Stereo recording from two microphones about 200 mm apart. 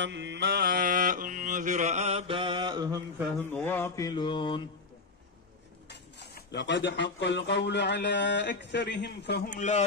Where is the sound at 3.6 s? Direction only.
10° left (ahead or behind).